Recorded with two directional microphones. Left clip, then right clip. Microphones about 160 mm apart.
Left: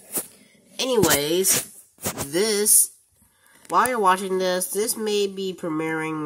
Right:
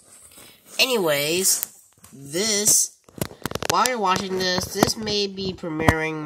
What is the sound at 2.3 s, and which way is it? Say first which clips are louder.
Speech: left 1 dB; 5° left (ahead or behind).